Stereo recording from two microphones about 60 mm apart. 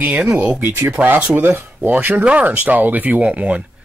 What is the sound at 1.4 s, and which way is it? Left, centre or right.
Speech, right.